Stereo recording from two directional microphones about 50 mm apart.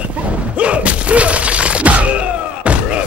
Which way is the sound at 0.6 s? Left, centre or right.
Right.